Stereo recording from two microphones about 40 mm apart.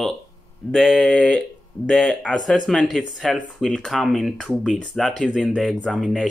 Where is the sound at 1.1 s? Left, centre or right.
Left.